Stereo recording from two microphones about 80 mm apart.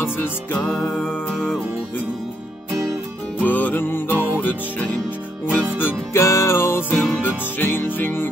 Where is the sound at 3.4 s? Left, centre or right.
Left.